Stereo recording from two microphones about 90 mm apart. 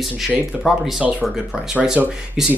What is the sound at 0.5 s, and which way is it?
Speech, 10° right (ahead or behind).